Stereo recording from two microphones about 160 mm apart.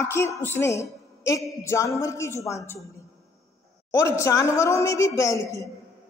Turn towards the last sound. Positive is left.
turn(degrees=20)  # may be behind; listen again after turning